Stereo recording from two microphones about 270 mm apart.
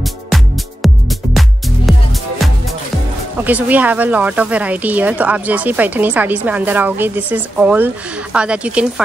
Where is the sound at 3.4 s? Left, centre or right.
Centre.